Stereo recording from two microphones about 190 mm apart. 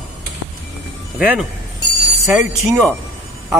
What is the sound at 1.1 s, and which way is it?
Speech, 5° right (ahead or behind).